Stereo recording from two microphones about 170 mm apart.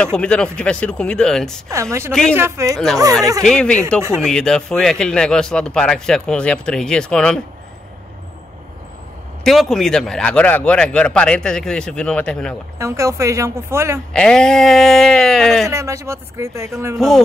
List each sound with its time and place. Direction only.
0.0 s speech: 5° left (ahead or behind)
1.7 s speech: 15° right (ahead or behind)
3.4 s speech: 5° left (ahead or behind)
9.4 s speech: centre (ahead or behind)
12.7 s speech: 15° right (ahead or behind)
14.1 s speech: 5° left (ahead or behind)
15.7 s speech: 15° right (ahead or behind)